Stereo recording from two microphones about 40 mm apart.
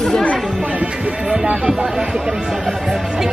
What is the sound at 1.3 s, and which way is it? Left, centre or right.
Speech, right.